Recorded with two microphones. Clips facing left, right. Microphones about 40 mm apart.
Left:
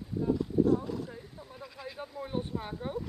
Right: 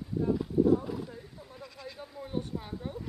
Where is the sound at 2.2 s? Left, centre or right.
Left.